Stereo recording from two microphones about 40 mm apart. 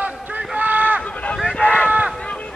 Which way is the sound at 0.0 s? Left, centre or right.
Right.